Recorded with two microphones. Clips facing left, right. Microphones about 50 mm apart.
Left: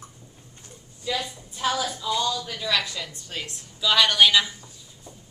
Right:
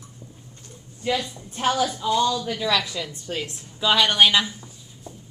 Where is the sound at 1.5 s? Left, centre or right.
Right.